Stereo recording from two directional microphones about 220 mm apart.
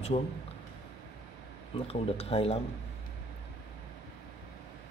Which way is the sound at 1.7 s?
25° left (ahead or behind).